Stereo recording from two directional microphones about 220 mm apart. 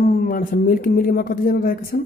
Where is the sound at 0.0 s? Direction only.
40° left (ahead or behind).